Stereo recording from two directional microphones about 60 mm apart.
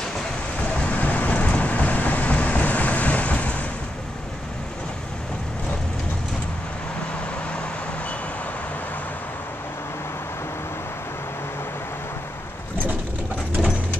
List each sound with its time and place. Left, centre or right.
0.6 s vehicle: left